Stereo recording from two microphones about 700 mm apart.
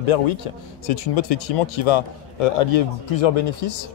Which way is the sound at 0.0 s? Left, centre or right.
Left.